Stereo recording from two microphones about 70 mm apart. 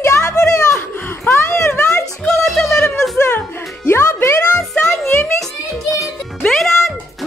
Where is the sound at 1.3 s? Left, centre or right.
Left.